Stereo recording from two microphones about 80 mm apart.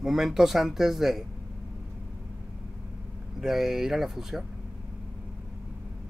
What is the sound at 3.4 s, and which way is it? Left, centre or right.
Speech, centre.